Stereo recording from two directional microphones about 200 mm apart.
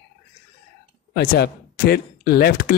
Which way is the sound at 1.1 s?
50° left (ahead or behind).